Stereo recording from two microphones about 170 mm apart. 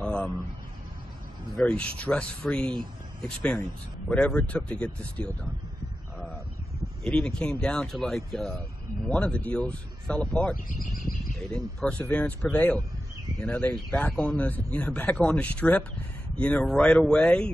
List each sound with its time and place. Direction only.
0.0 s a sound: 5° left (ahead or behind)
1.6 s speech: 5° left (ahead or behind)
7.0 s speech: 5° left (ahead or behind)
11.0 s speech: 55° left (ahead or behind)
11.5 s speech: 5° left (ahead or behind)